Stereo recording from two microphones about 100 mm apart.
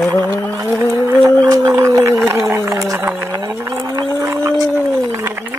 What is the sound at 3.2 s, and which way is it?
Speech, 25° right (ahead or behind).